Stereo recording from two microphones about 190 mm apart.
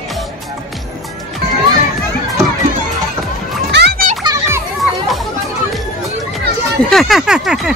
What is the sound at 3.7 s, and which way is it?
Children playing, 60° right (ahead or behind).